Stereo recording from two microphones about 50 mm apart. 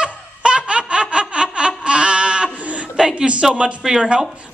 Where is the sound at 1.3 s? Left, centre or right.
Right.